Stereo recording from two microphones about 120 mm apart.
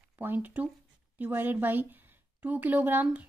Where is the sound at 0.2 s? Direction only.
15° right (ahead or behind).